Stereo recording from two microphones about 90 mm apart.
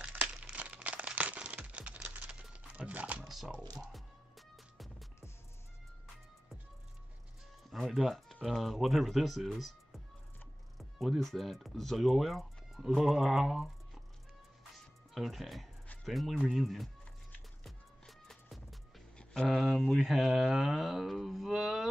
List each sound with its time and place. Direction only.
0.0 s crumpling: 15° right (ahead or behind)
3.3 s speech: 5° right (ahead or behind)
3.7 s music: centre (ahead or behind)
7.7 s speech: centre (ahead or behind)
15.1 s speech: centre (ahead or behind)
17.6 s music: 5° left (ahead or behind)
19.1 s speech: centre (ahead or behind)